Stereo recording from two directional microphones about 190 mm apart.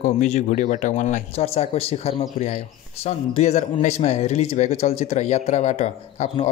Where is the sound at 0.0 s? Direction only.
40° left (ahead or behind).